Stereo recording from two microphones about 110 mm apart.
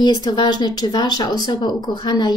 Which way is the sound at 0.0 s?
40° left (ahead or behind).